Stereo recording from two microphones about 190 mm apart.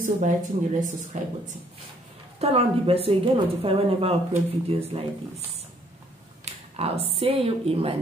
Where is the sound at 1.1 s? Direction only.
40° right (ahead or behind).